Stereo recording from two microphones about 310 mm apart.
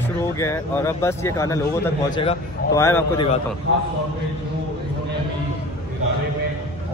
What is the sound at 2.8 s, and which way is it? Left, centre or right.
Speech, centre.